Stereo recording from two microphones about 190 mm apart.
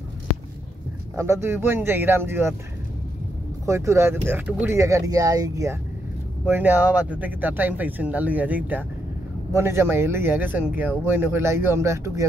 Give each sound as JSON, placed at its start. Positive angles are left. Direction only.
{"t": 1.1, "sound": "speech", "side_deg": -15}
{"t": 3.6, "sound": "speech", "side_deg": -15}